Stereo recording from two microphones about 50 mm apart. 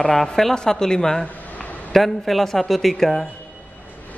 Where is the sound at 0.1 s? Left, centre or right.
Centre.